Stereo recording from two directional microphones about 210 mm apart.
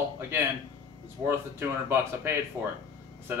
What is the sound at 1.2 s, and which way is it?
Speech, 10° right (ahead or behind).